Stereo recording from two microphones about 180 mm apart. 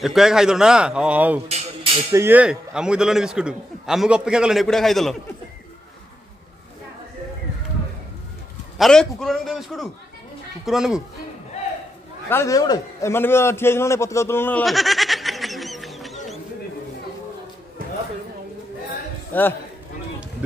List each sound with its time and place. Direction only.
0.0 s a man's voice: centre (ahead or behind)
1.5 s speech: 30° right (ahead or behind)
2.1 s a man's voice: 10° right (ahead or behind)
8.7 s a man's voice: centre (ahead or behind)
12.3 s a man's voice: 15° left (ahead or behind)
14.6 s a sound: centre (ahead or behind)
19.3 s a man's voice: 10° left (ahead or behind)